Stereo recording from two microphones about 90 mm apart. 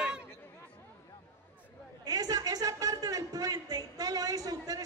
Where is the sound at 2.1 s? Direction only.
45° right (ahead or behind).